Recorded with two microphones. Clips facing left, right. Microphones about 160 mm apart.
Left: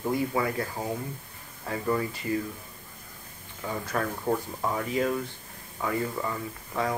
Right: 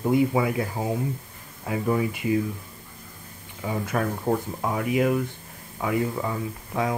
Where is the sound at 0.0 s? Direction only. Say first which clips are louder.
Right 6 dB; 20° right (ahead or behind).